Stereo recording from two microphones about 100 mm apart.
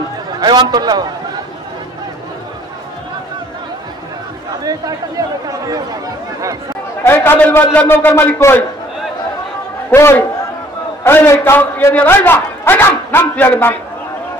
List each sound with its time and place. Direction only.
0.4 s a man's voice: 45° right (ahead or behind)
4.6 s speech: 35° right (ahead or behind)
7.2 s a man's voice: 20° left (ahead or behind)
9.9 s a man's voice: 25° left (ahead or behind)